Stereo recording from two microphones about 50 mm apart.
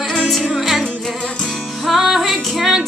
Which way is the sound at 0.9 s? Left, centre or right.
Centre.